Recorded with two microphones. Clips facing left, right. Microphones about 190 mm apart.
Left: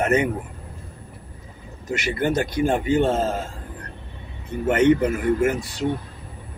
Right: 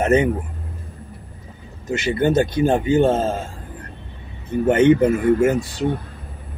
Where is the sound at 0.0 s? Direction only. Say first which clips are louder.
Right 4 dB; 25° right (ahead or behind).